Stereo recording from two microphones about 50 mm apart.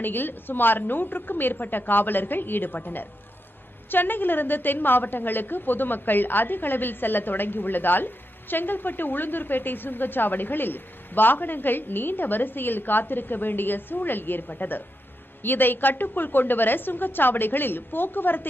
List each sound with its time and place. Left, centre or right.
0.0 s a woman's voice: left